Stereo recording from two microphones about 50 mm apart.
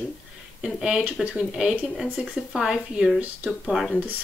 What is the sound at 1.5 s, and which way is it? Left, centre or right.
Speech, centre.